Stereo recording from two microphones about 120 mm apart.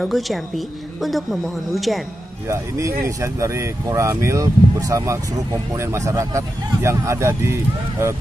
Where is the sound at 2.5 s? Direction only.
25° right (ahead or behind).